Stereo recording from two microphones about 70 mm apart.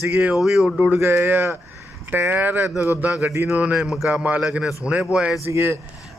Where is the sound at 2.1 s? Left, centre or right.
Right.